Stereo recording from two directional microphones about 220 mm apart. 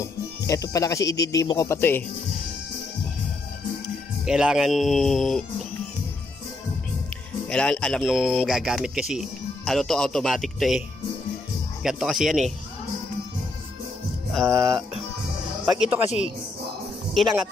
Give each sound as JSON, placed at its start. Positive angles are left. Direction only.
{"t": 0.0, "sound": "speech", "side_deg": 15}
{"t": 4.3, "sound": "speech", "side_deg": -5}
{"t": 7.4, "sound": "speech", "side_deg": 5}
{"t": 11.8, "sound": "speech", "side_deg": 0}
{"t": 14.5, "sound": "music", "side_deg": -15}
{"t": 15.6, "sound": "speech", "side_deg": -5}
{"t": 17.1, "sound": "speech", "side_deg": 0}